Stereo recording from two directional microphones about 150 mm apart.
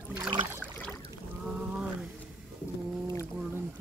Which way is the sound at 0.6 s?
10° left (ahead or behind).